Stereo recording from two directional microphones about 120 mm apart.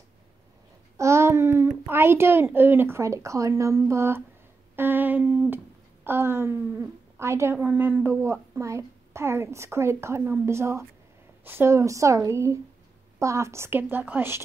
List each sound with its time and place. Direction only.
0.9 s babbling: 25° right (ahead or behind)
1.9 s a woman's voice: 20° right (ahead or behind)